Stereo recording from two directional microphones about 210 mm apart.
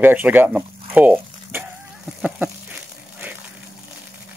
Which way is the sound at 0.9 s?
10° right (ahead or behind).